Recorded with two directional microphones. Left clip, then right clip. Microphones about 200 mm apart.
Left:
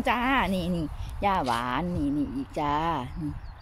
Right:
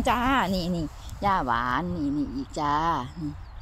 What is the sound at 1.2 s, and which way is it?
Speech, centre (ahead or behind).